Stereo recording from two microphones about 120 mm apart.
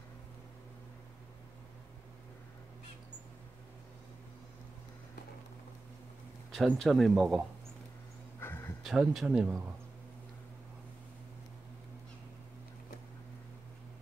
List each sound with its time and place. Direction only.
6.5 s speech: centre (ahead or behind)
8.4 s a sound: 20° left (ahead or behind)
8.8 s speech: centre (ahead or behind)